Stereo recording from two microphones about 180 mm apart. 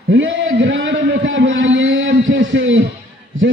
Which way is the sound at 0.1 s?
85° right.